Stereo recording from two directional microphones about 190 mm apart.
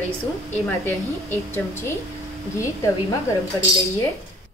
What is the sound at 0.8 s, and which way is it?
A woman's voice, 10° left (ahead or behind).